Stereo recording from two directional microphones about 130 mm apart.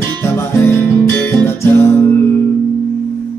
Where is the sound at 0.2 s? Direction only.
20° left (ahead or behind).